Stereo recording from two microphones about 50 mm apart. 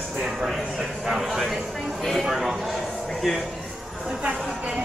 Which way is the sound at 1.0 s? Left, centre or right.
Centre.